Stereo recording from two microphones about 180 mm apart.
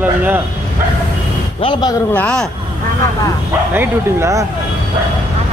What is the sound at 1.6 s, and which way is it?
Speech, 25° left (ahead or behind).